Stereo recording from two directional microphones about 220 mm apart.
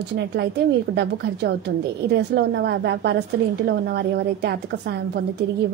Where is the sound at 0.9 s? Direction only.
45° right (ahead or behind).